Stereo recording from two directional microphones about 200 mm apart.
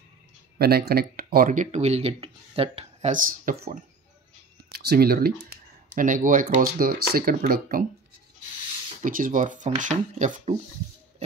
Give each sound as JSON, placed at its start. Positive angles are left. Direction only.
{"t": 0.6, "sound": "speech", "side_deg": -50}
{"t": 9.0, "sound": "speech", "side_deg": -40}